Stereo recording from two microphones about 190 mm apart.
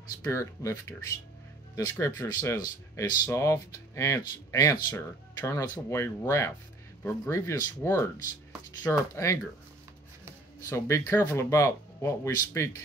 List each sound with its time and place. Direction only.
0.2 s speech: 15° left (ahead or behind)
10.6 s speech: 15° left (ahead or behind)